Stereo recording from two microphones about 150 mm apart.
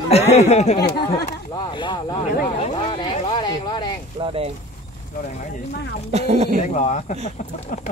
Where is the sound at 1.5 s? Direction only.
30° left (ahead or behind).